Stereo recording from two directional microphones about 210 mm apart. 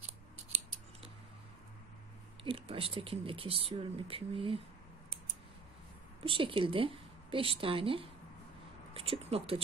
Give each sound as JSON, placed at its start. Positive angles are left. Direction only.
{"t": 2.4, "sound": "speech", "side_deg": -25}
{"t": 6.2, "sound": "speech", "side_deg": -25}